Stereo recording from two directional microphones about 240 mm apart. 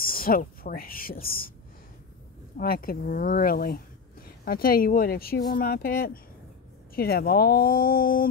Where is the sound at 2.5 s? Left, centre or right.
Left.